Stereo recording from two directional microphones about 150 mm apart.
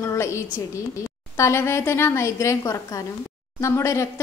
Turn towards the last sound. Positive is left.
turn(degrees=20)  # may be behind; listen again after turning